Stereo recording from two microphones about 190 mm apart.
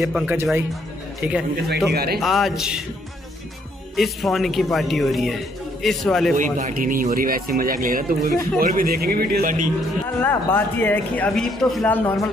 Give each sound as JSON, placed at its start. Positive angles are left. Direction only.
{"t": 0.0, "sound": "a man's voice", "side_deg": -5}
{"t": 1.9, "sound": "speech", "side_deg": -55}
{"t": 2.1, "sound": "a man's voice", "side_deg": 0}
{"t": 3.9, "sound": "a man's voice", "side_deg": 0}
{"t": 6.3, "sound": "speech", "side_deg": -45}
{"t": 10.2, "sound": "speech", "side_deg": 10}